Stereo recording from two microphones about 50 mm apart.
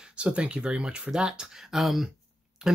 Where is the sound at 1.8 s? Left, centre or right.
Centre.